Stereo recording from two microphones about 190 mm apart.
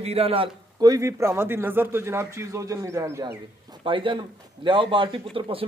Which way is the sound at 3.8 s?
25° right (ahead or behind).